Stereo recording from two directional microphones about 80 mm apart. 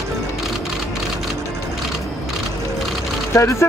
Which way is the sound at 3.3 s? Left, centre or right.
Left.